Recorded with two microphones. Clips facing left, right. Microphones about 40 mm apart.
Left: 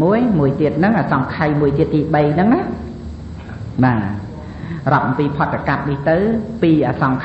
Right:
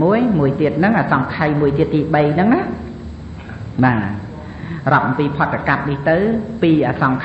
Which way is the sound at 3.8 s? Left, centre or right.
Right.